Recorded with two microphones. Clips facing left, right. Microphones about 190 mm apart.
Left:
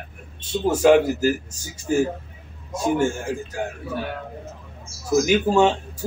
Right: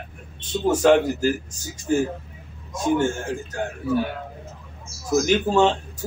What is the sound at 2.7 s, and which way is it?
Speech, 10° left (ahead or behind).